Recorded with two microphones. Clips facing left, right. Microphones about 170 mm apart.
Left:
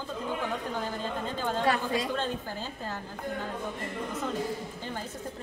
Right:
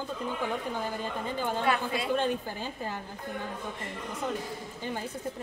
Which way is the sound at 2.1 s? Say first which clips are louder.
Right 3 dB; 15° right (ahead or behind).